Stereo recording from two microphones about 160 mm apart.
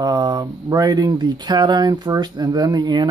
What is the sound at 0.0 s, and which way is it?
Speech, 25° right (ahead or behind).